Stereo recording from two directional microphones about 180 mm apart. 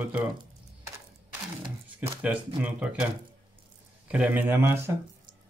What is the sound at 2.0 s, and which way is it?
Speech, 15° right (ahead or behind).